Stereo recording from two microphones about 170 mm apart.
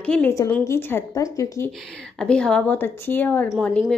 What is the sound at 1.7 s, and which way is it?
A woman's voice, 5° left (ahead or behind).